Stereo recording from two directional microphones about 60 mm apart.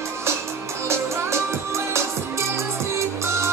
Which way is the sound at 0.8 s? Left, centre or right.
Right.